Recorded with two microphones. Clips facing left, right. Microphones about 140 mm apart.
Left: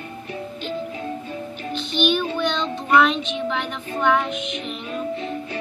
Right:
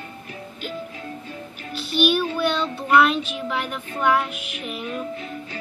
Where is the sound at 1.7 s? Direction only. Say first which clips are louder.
Right 1 dB; 5° right (ahead or behind).